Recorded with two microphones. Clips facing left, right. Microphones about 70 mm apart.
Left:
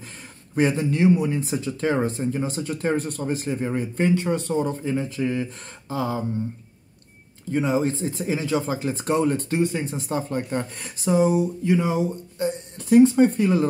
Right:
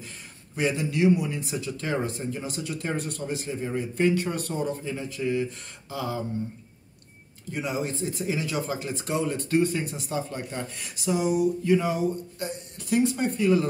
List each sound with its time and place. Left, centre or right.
0.6 s speech: left
7.5 s speech: left
9.5 s speech: left